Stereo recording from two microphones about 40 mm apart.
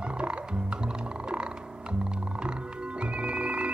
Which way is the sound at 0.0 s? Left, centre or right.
Right.